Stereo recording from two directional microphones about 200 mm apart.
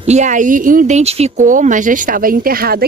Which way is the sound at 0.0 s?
35° right (ahead or behind).